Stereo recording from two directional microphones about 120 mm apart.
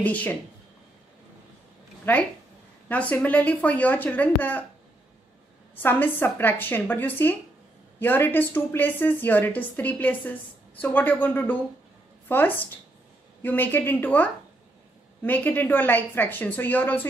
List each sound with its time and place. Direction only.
0.0 s a woman's voice: 15° left (ahead or behind)
2.1 s a woman's voice: 15° left (ahead or behind)
5.8 s a woman's voice: 15° left (ahead or behind)